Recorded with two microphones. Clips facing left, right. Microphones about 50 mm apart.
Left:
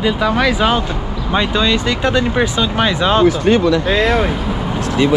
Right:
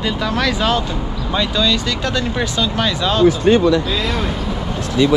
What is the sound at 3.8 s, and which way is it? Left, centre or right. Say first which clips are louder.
Speech: left 6 dB; left.